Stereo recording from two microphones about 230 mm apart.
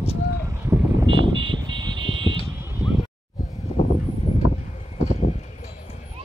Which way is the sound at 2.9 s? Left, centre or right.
Left.